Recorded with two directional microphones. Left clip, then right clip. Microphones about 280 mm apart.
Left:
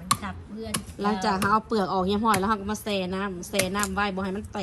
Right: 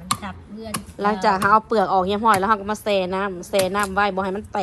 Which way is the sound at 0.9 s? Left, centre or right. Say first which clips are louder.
Right 7 dB; centre.